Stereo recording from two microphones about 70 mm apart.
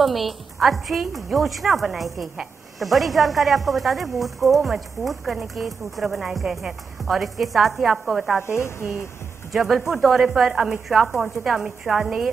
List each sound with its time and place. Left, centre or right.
0.0 s a woman's voice: centre
8.4 s speech: left
9.5 s a woman's voice: centre